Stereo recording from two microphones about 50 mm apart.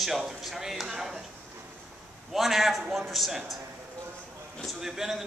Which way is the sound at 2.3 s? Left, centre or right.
Centre.